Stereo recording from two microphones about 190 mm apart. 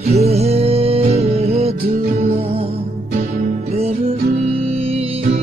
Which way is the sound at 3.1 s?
50° right (ahead or behind).